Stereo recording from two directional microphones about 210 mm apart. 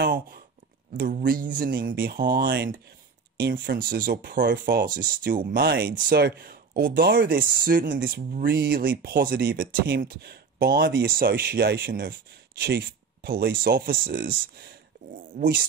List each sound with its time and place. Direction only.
0.0 s speech: 45° right (ahead or behind)
7.3 s speech: 40° right (ahead or behind)